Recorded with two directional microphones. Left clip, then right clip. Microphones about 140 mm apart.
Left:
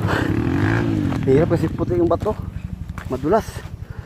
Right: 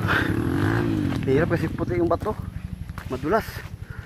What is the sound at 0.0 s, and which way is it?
Roaring cats, 40° left (ahead or behind).